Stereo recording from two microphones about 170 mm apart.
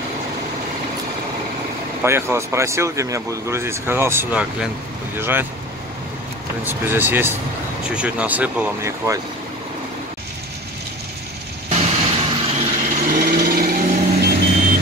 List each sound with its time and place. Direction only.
2.0 s speech: 15° right (ahead or behind)
6.6 s speech: 10° right (ahead or behind)
11.7 s vehicle: 40° right (ahead or behind)
12.8 s vehicle: 55° right (ahead or behind)